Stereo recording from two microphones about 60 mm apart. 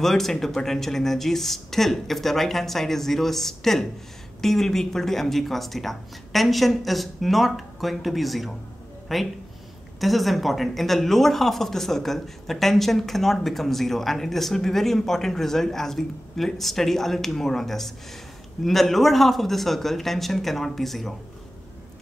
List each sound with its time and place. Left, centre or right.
0.0 s speech: centre